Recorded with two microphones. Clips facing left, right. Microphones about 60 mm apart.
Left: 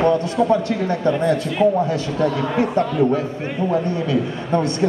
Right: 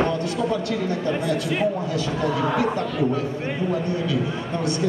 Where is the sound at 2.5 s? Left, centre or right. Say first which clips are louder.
Left 4 dB; left.